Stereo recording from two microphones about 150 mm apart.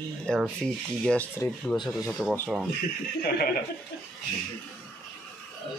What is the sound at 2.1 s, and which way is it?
Speech, 5° left (ahead or behind).